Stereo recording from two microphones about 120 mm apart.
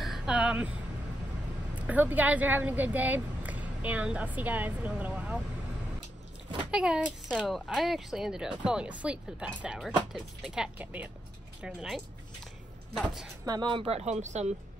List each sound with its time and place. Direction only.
0.0 s vehicle: 5° right (ahead or behind)
1.8 s speech: 15° right (ahead or behind)
6.5 s a child's voice: 10° right (ahead or behind)
13.5 s speech: 40° right (ahead or behind); by 14.5 s 75° right (ahead or behind)